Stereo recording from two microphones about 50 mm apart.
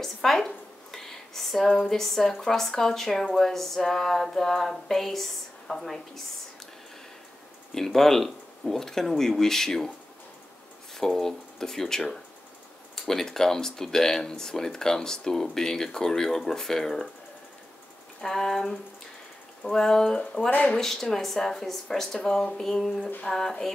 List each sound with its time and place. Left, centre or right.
0.0 s a sound: centre
0.9 s speech: centre
7.7 s speech: centre
11.0 s speech: centre
18.2 s speech: centre
20.4 s speech: left
20.8 s speech: centre
22.5 s a sound: centre
23.2 s speech: centre